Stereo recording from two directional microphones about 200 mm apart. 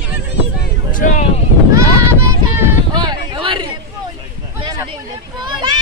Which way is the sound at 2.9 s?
20° right (ahead or behind).